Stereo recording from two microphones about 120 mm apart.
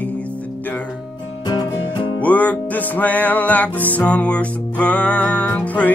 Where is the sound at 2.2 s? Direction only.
10° left (ahead or behind).